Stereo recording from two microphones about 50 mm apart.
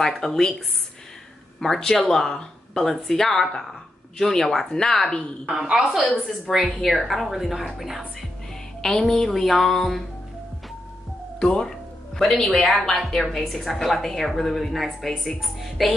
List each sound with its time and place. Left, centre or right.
0.0 s speech: centre
1.6 s speech: centre
5.6 s a woman's voice: centre
9.0 s a woman's voice: centre
11.3 s speech: centre
11.6 s a woman's voice: centre